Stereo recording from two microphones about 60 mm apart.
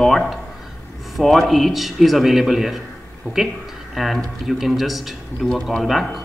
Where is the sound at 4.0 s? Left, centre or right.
Centre.